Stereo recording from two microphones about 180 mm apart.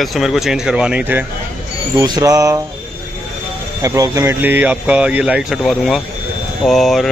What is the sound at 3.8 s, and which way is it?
Speech, 20° right (ahead or behind).